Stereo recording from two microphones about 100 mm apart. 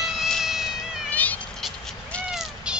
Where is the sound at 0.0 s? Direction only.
5° right (ahead or behind).